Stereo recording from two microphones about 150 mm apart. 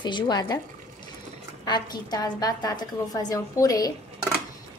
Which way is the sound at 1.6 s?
30° left (ahead or behind).